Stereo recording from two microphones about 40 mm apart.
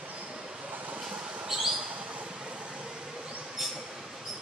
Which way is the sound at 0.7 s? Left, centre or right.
Right.